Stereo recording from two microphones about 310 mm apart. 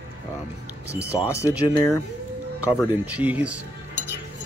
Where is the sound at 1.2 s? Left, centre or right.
Centre.